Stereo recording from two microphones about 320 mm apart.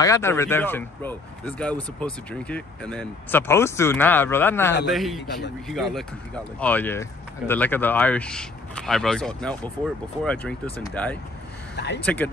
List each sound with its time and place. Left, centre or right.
0.0 s speech: centre
11.7 s vehicle: left
12.0 s speech: centre